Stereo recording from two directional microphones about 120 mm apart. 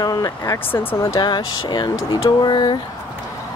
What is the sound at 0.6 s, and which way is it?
Speech, 15° left (ahead or behind).